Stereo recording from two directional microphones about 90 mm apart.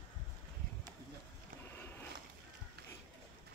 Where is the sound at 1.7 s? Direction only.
25° left (ahead or behind).